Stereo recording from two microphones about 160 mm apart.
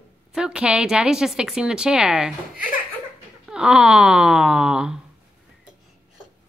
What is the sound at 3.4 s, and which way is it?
A woman's voice, 5° right (ahead or behind).